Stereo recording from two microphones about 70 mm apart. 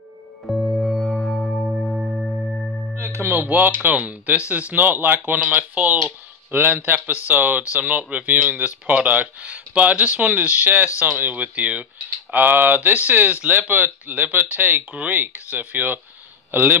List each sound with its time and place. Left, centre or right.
0.5 s music: centre
2.9 s speech: right